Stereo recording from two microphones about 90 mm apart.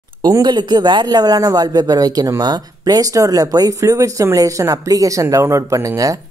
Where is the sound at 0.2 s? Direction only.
50° right (ahead or behind).